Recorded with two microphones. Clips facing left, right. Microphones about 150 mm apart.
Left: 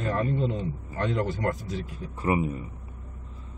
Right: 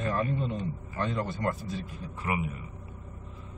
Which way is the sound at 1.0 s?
80° left.